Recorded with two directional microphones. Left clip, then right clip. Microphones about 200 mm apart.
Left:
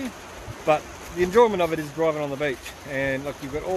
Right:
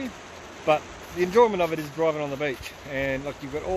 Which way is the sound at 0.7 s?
Centre (ahead or behind).